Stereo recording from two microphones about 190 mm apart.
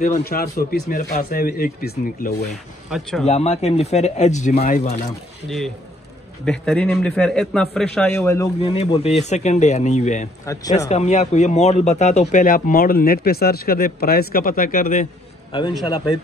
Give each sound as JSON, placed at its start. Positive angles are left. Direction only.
{"t": 0.2, "sound": "speech", "side_deg": 55}
{"t": 2.5, "sound": "a man's voice", "side_deg": 0}
{"t": 3.3, "sound": "speech", "side_deg": 35}
{"t": 6.4, "sound": "a man's voice", "side_deg": 5}
{"t": 8.5, "sound": "speech", "side_deg": 30}
{"t": 10.4, "sound": "speech", "side_deg": 20}
{"t": 10.9, "sound": "speech", "side_deg": 35}